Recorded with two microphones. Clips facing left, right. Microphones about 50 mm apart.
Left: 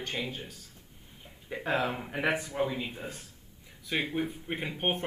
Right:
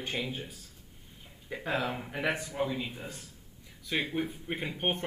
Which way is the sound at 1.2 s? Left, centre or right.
Centre.